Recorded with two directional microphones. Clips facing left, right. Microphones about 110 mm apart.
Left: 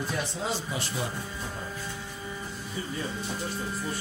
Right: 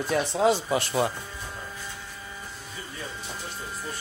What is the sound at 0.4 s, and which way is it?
Speech, 65° right (ahead or behind).